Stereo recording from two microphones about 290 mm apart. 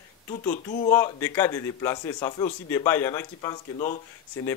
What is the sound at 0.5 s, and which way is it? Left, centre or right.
Speech, left.